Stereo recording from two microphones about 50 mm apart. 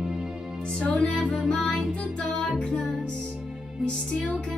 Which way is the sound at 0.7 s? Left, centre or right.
Left.